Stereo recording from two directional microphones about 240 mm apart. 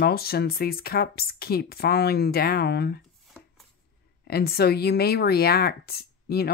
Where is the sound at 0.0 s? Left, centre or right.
Left.